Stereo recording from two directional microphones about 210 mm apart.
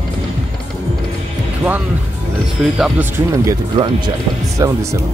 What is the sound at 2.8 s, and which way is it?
Speech, 10° right (ahead or behind).